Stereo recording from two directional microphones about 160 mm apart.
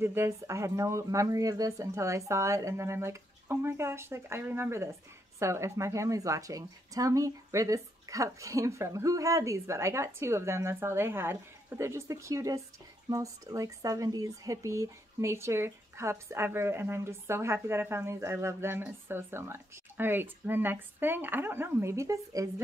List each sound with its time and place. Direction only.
0.0 s speech: 15° right (ahead or behind)